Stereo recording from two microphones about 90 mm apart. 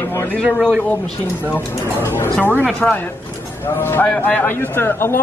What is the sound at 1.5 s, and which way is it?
Speech, 30° left (ahead or behind).